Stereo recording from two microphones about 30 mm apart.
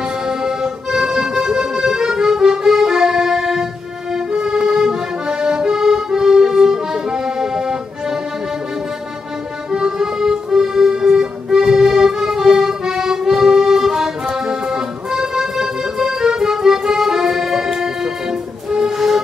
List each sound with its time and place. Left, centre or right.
0.0 s accordion: right
9.7 s accordion: right
18.9 s music: centre